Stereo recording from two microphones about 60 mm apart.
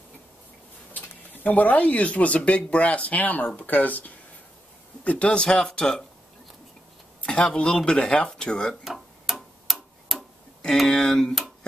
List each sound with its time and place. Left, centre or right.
0.9 s speech: left; by 6.0 s centre
7.2 s speech: centre
8.8 s tick-tock: centre
10.9 s speech: centre